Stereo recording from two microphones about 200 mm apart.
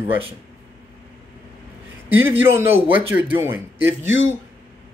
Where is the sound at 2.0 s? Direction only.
10° right (ahead or behind).